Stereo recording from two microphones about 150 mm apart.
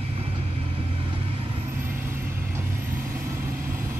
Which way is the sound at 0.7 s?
40° right (ahead or behind).